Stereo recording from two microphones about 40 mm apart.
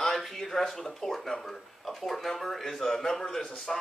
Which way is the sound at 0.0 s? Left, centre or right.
Centre.